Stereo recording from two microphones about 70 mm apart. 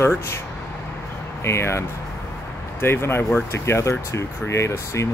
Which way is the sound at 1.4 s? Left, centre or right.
Left.